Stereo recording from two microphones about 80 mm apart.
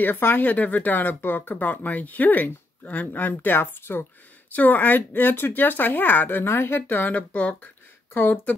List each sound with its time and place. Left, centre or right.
0.0 s speech: left